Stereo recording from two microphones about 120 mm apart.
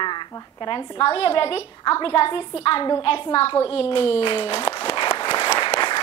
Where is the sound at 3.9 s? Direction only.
45° left (ahead or behind).